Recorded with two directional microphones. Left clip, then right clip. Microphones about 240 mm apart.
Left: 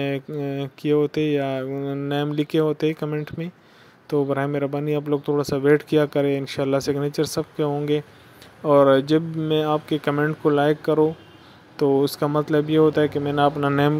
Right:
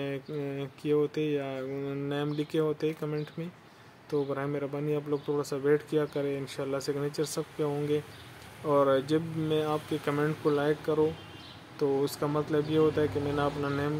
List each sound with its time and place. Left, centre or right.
0.0 s speech: left